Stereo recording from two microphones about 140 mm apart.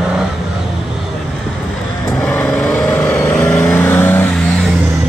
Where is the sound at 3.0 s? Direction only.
20° left (ahead or behind).